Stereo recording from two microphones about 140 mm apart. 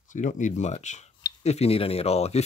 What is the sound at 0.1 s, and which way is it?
Speech, 65° left (ahead or behind).